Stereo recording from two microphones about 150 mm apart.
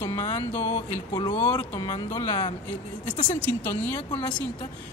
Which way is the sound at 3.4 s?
15° left (ahead or behind).